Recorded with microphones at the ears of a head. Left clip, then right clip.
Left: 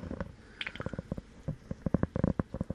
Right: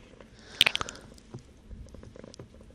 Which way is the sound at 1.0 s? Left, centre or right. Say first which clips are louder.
Left 5 dB; left.